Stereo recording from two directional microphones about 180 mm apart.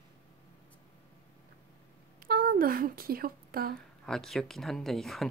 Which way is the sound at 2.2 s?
55° right (ahead or behind).